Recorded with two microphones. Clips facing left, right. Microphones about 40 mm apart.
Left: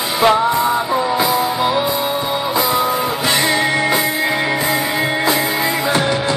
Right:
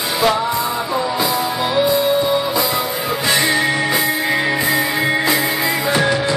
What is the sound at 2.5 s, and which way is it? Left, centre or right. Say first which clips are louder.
Music: left 3 dB; left.